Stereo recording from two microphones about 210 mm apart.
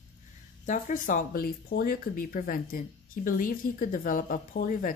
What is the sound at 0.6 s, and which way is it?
Speech, 40° left (ahead or behind).